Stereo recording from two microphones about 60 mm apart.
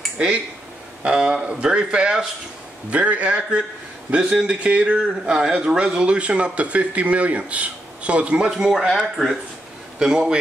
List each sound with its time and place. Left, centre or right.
1.0 s a man's voice: centre